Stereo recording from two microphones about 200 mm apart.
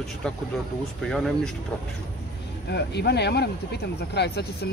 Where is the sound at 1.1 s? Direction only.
Centre (ahead or behind).